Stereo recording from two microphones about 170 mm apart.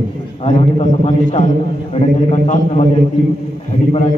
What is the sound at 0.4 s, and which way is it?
A man's voice, 30° left (ahead or behind).